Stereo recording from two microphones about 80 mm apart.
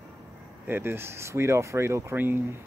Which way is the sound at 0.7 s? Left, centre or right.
Right.